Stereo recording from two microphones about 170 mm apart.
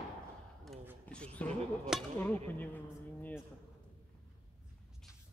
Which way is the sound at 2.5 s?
10° left (ahead or behind).